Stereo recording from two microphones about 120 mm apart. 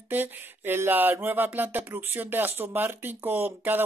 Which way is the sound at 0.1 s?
15° right (ahead or behind).